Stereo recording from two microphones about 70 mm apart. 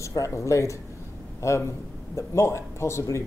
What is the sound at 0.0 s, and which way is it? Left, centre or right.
A man's voice, left.